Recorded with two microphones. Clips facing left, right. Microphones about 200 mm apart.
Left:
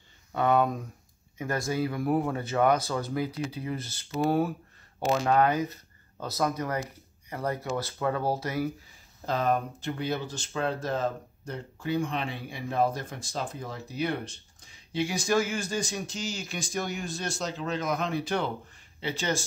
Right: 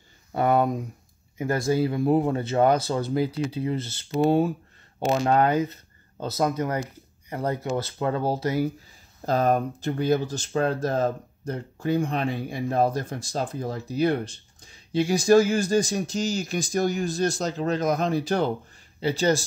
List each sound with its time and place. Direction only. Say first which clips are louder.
0.3 s speech: right 3 dB; 35° right (ahead or behind)
9.2 s speech: right 5 dB; 40° right (ahead or behind)